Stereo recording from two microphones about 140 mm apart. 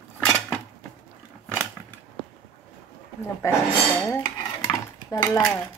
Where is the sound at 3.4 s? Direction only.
20° left (ahead or behind).